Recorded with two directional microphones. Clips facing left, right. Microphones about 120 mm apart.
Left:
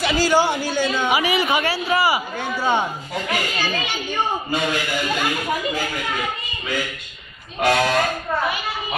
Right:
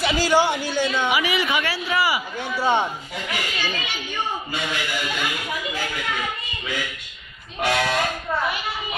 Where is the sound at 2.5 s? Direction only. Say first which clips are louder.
Even; centre (ahead or behind).